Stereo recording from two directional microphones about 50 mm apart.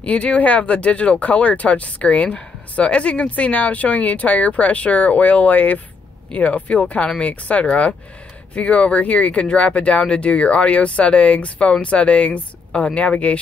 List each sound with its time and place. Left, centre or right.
0.0 s a woman's voice: left